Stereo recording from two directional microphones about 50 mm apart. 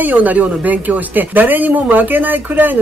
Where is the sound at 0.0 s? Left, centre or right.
Right.